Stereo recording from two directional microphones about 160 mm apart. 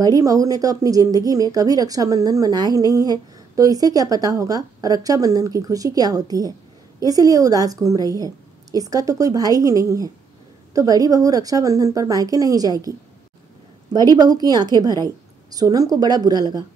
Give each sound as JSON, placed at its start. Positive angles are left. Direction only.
{"t": 0.0, "sound": "speech", "side_deg": -20}
{"t": 14.1, "sound": "speech", "side_deg": -25}